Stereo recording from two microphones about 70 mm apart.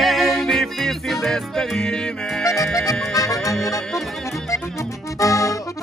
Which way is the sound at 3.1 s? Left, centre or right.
Left.